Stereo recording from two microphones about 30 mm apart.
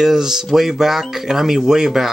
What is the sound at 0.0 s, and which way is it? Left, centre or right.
Speech, centre.